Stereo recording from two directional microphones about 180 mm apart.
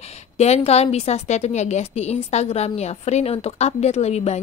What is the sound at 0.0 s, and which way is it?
A woman's voice, 35° left (ahead or behind).